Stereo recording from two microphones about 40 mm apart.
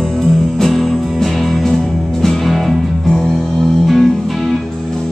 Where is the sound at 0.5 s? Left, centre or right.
Centre.